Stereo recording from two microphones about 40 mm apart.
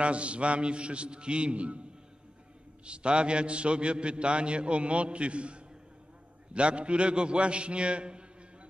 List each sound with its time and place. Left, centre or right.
0.0 s a man's voice: right
2.8 s a man's voice: right